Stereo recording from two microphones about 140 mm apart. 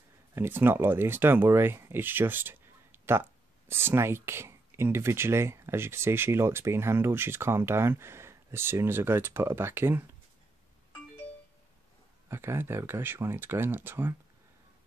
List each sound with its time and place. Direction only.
0.3 s speech: 15° right (ahead or behind)
12.3 s speech: 15° right (ahead or behind)